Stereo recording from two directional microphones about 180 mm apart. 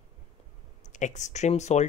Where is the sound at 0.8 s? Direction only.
45° left (ahead or behind).